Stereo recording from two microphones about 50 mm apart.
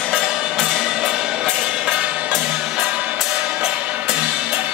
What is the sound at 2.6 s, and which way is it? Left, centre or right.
Music, centre.